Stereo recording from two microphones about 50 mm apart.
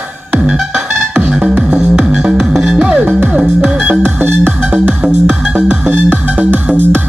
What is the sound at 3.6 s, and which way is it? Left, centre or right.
Music, centre.